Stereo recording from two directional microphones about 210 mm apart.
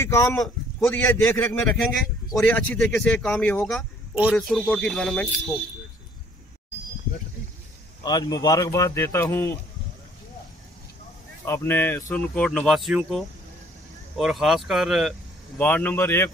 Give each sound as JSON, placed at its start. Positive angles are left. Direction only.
{"t": 0.0, "sound": "speech", "side_deg": 15}
{"t": 4.1, "sound": "speech", "side_deg": -5}
{"t": 8.0, "sound": "speech", "side_deg": 20}
{"t": 11.4, "sound": "speech", "side_deg": 10}